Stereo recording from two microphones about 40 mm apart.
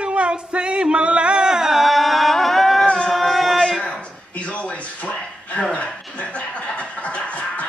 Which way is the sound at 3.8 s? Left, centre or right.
Left.